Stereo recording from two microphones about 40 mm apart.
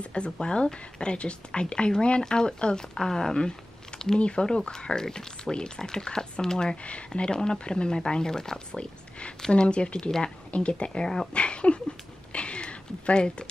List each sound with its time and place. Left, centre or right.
0.0 s a woman's voice: left
9.5 s a woman's voice: left
12.3 s a sound: left